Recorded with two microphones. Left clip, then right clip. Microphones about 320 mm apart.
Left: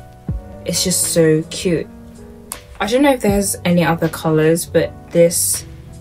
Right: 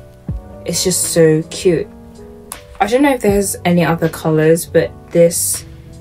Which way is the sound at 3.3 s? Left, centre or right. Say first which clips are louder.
Right 3 dB; left.